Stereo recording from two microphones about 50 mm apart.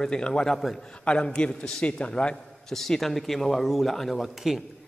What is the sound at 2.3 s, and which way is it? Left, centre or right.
A man's voice, centre.